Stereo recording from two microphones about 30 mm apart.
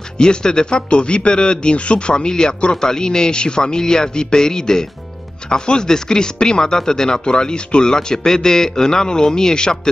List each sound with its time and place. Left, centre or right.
0.2 s a man's voice: left